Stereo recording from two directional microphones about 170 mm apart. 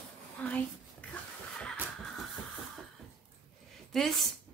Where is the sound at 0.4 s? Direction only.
10° left (ahead or behind).